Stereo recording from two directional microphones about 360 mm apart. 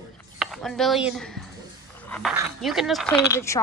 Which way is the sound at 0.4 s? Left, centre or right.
Centre.